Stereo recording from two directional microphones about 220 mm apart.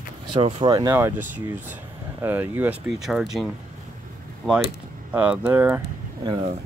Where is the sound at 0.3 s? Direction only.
25° right (ahead or behind).